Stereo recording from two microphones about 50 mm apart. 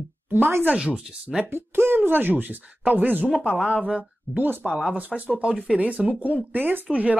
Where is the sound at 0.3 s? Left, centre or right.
Right.